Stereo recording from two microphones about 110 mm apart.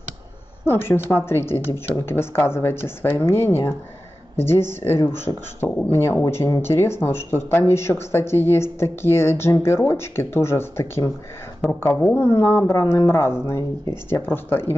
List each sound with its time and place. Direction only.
0.7 s speech: 20° left (ahead or behind)
12.0 s speech: 10° left (ahead or behind)